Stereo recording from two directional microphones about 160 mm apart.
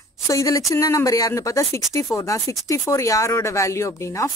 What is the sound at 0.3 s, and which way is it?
Speech, 20° left (ahead or behind).